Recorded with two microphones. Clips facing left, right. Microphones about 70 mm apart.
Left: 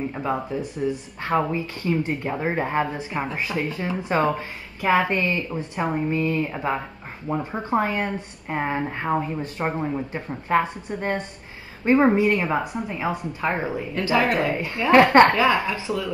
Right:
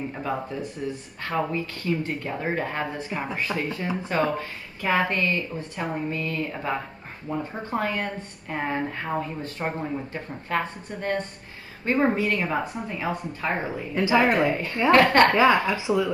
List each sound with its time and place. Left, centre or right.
0.1 s a woman's voice: centre
1.4 s a woman's voice: centre
13.9 s speech: centre
14.9 s a woman's voice: centre
15.3 s speech: right